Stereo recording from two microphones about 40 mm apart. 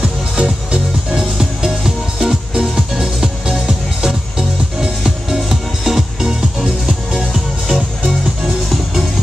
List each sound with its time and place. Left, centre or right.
0.0 s music: right